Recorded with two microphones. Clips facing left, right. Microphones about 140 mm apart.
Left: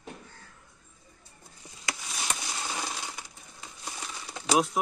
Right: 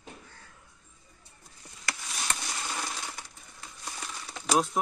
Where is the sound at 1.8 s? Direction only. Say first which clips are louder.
Even; 10° left (ahead or behind).